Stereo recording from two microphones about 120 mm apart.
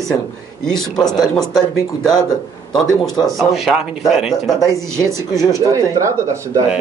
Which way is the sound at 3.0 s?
Centre (ahead or behind).